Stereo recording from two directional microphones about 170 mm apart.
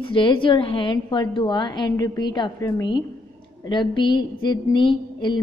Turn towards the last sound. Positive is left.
turn(degrees=30)  # may be behind; listen again after turning